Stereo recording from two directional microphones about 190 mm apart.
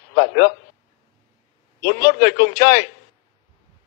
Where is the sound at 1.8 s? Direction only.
55° left (ahead or behind).